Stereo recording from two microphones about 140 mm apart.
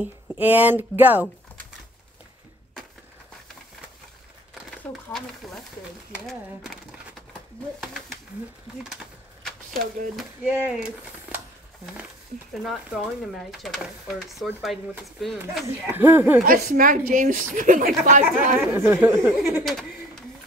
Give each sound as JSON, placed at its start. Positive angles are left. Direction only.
{"t": 0.0, "sound": "speech", "side_deg": -10}
{"t": 4.6, "sound": "a sound", "side_deg": 5}
{"t": 6.2, "sound": "speech", "side_deg": 0}
{"t": 7.8, "sound": "speech", "side_deg": 0}
{"t": 10.4, "sound": "speech", "side_deg": -15}
{"t": 11.3, "sound": "a sound", "side_deg": -10}
{"t": 12.3, "sound": "speech", "side_deg": -80}
{"t": 12.6, "sound": "speech", "side_deg": 0}
{"t": 15.6, "sound": "speech", "side_deg": -15}
{"t": 16.4, "sound": "a woman's voice", "side_deg": -90}
{"t": 18.7, "sound": "speech", "side_deg": -15}
{"t": 19.1, "sound": "speech", "side_deg": -5}
{"t": 19.6, "sound": "a sound", "side_deg": 5}